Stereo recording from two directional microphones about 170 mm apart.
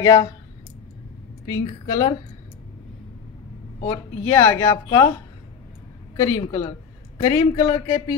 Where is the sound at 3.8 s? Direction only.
10° left (ahead or behind).